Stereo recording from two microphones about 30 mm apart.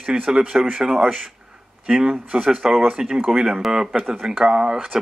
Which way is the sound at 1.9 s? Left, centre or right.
Right.